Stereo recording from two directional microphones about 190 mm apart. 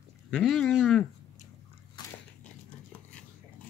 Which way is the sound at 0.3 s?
Centre (ahead or behind).